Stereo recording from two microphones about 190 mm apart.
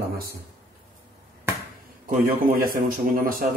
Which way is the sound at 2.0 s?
45° right (ahead or behind).